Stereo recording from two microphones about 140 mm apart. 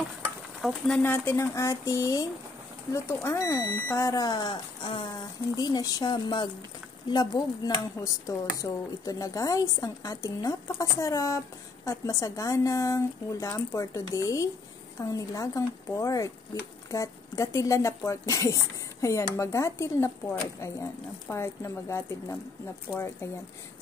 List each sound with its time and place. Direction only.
0.6 s speech: centre (ahead or behind); by 22.0 s 20° left (ahead or behind)
23.2 s speech: 15° left (ahead or behind)